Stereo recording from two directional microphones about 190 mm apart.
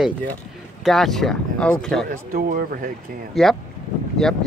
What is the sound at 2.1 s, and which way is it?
Speech, 50° right (ahead or behind).